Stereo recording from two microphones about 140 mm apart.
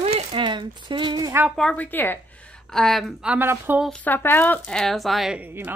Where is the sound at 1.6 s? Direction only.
10° left (ahead or behind).